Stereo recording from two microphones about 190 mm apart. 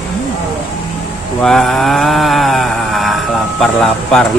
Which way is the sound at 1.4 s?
5° left (ahead or behind).